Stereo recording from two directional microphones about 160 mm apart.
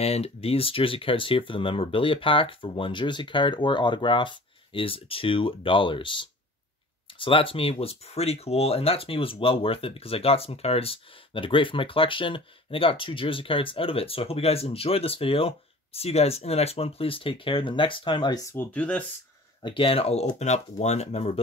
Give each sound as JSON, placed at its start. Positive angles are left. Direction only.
{"t": 0.0, "sound": "speech", "side_deg": 40}
{"t": 19.6, "sound": "speech", "side_deg": 35}